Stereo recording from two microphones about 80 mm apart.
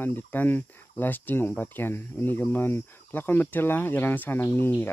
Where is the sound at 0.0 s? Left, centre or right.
Left.